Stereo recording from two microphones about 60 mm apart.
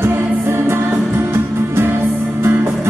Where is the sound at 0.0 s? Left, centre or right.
Right.